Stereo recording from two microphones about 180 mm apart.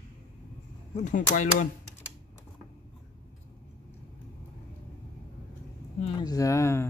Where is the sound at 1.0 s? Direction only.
45° left (ahead or behind).